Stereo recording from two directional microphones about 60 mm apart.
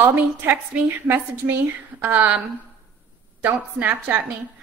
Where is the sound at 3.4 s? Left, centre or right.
Right.